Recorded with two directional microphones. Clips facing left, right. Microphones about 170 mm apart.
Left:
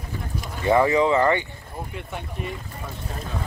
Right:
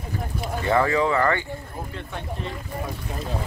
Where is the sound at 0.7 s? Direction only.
15° left (ahead or behind).